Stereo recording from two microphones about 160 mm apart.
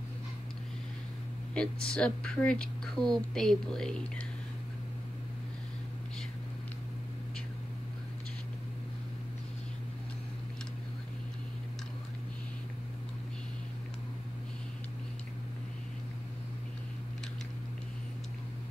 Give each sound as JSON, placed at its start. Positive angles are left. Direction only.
{"t": 1.5, "sound": "speech", "side_deg": 5}